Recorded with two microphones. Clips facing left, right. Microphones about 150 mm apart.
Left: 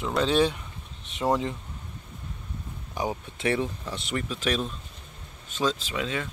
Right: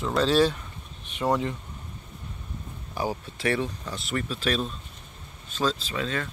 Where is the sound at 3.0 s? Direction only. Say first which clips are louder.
Right 1 dB; 20° left (ahead or behind).